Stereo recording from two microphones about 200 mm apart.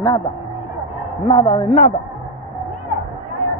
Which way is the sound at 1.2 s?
25° left (ahead or behind).